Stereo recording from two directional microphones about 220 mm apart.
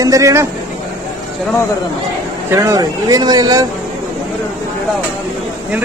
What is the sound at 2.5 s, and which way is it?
Speech, 15° right (ahead or behind).